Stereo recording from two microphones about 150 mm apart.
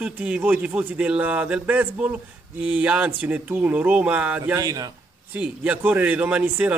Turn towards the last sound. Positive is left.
turn(degrees=-10)  # may be behind; listen again after turning